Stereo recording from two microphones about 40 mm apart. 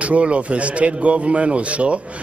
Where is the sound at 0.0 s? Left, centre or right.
Right.